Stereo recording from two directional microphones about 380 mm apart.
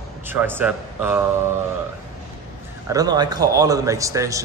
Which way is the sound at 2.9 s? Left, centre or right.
Centre.